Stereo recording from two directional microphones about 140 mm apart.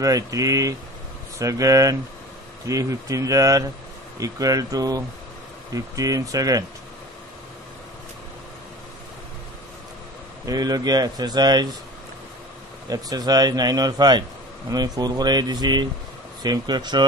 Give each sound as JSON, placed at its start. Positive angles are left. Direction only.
{"t": 0.0, "sound": "speech", "side_deg": -25}
{"t": 10.4, "sound": "speech", "side_deg": -25}
{"t": 12.9, "sound": "speech", "side_deg": -30}